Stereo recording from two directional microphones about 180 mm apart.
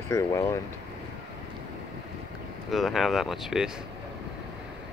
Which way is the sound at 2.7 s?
Centre (ahead or behind).